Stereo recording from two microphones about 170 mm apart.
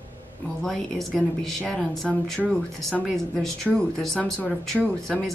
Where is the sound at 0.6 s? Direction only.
Centre (ahead or behind).